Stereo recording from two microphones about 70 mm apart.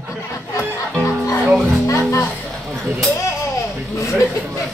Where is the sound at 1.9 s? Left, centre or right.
Left.